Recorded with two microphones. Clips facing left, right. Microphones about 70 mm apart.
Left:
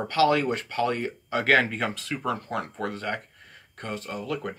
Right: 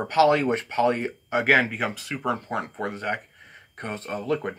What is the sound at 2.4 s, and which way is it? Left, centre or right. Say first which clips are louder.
Speech: right 1 dB; right.